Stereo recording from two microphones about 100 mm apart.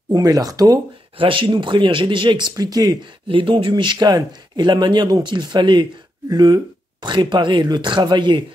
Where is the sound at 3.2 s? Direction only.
60° right (ahead or behind).